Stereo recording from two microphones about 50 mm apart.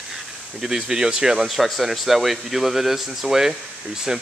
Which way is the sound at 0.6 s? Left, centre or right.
Centre.